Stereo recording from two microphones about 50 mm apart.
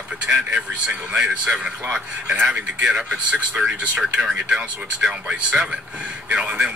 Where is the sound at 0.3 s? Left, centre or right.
Centre.